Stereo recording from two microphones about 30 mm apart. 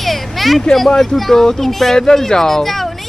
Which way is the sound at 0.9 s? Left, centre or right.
Centre.